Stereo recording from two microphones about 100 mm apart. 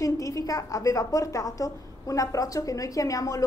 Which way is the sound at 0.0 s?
35° left (ahead or behind).